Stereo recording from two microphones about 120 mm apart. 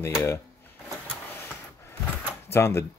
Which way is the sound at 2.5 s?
20° left (ahead or behind).